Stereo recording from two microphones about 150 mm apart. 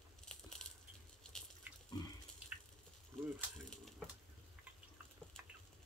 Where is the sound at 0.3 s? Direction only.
5° left (ahead or behind).